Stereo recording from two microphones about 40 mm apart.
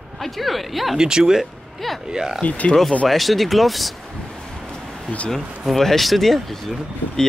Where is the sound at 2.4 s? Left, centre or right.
Left.